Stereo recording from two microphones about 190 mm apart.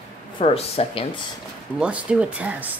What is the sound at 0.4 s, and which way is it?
Speech, 30° left (ahead or behind).